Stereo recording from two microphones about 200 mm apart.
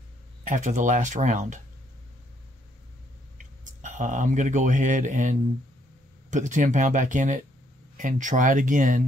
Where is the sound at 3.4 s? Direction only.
40° right (ahead or behind).